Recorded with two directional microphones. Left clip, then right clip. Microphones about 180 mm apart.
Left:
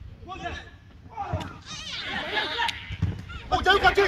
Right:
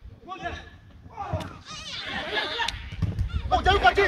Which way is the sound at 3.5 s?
55° left (ahead or behind).